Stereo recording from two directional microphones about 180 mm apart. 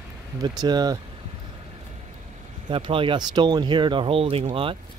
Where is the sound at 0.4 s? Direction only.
20° right (ahead or behind).